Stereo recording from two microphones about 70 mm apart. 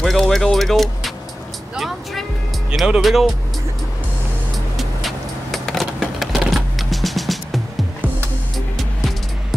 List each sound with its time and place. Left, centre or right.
0.0 s vehicle: centre
1.8 s music: centre
2.7 s speech: centre
4.7 s vehicle: centre